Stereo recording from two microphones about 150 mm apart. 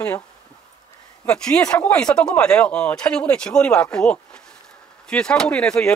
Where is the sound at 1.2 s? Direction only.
5° left (ahead or behind).